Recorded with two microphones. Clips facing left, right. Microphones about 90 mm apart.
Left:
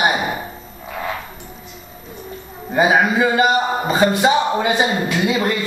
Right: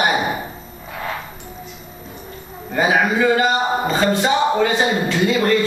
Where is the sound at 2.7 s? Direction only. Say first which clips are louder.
Left 2 dB; 15° left (ahead or behind).